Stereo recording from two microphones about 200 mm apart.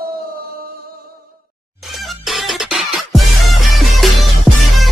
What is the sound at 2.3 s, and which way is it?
Music, centre (ahead or behind).